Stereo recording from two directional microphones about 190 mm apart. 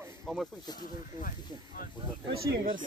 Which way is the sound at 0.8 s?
45° left (ahead or behind).